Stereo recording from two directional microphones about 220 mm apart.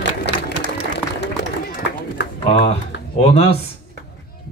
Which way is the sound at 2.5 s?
30° left (ahead or behind).